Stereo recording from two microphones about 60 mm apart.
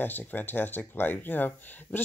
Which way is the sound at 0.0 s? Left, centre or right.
Left.